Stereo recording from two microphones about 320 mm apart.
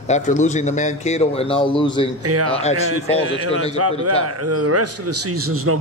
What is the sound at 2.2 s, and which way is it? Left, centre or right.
A man's voice, right.